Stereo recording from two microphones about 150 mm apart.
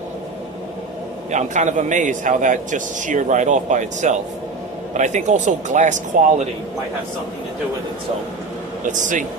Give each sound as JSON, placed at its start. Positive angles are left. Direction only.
{"t": 1.3, "sound": "a man's voice", "side_deg": -55}
{"t": 8.8, "sound": "a man's voice", "side_deg": -60}